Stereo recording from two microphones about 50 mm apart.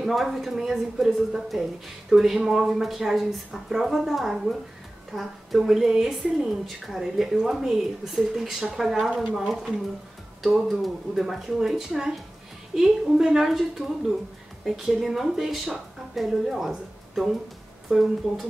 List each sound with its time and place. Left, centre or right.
0.0 s a woman's voice: centre